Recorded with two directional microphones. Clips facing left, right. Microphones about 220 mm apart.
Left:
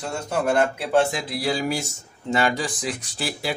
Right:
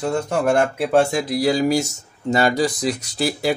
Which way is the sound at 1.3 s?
40° right (ahead or behind).